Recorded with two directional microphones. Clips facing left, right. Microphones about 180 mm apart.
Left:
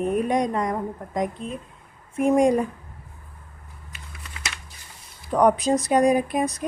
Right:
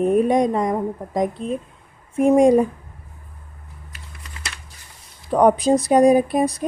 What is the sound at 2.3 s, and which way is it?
Speech, 30° right (ahead or behind).